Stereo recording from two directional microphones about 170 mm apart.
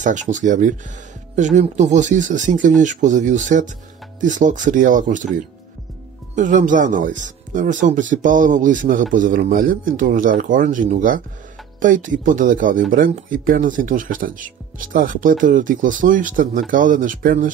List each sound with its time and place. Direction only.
0.0 s speech: 45° right (ahead or behind)
6.3 s speech: 50° right (ahead or behind)